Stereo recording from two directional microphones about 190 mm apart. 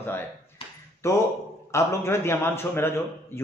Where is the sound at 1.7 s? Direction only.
15° left (ahead or behind).